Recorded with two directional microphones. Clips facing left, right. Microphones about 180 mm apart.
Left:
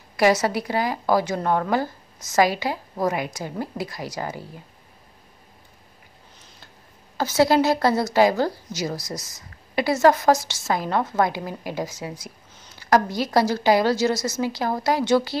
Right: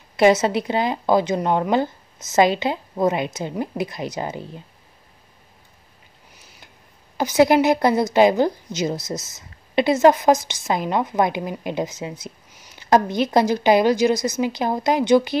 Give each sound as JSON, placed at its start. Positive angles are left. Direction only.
{"t": 0.1, "sound": "a woman's voice", "side_deg": -20}
{"t": 6.3, "sound": "a sound", "side_deg": -10}
{"t": 7.2, "sound": "a woman's voice", "side_deg": -15}